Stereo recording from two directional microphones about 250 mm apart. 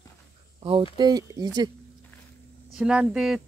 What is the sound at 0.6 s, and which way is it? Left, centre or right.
Speech, right.